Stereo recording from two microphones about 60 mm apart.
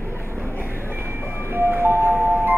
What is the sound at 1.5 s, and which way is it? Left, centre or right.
Music, right.